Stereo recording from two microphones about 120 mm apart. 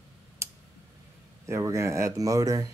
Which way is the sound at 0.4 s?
20° right (ahead or behind).